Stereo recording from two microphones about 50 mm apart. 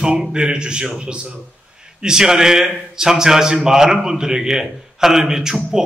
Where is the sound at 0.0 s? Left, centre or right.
Centre.